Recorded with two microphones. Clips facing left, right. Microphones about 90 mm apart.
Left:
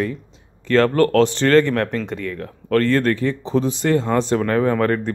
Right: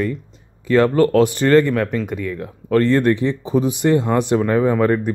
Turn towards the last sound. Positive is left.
turn(degrees=-10)  # may be behind; listen again after turning